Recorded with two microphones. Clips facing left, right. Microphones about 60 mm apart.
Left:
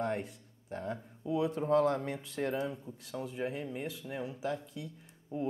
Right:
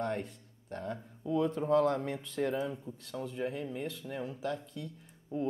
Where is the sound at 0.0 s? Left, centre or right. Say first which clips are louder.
Even; centre.